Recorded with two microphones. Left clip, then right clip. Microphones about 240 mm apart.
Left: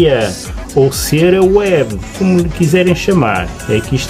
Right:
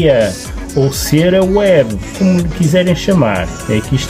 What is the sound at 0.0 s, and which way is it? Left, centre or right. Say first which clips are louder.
Speech: right 1 dB; centre.